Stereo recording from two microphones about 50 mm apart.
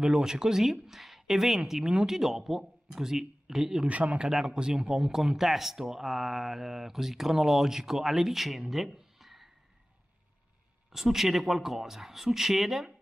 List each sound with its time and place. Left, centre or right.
0.0 s speech: centre
3.8 s speech: right
4.3 s speech: centre
10.9 s speech: centre